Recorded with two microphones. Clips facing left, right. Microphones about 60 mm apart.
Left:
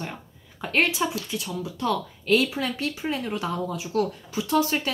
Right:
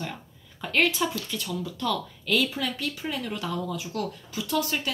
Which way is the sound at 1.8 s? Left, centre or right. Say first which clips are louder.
Left 4 dB; left.